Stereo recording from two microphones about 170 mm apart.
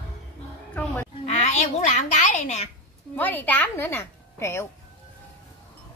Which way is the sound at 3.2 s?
10° left (ahead or behind).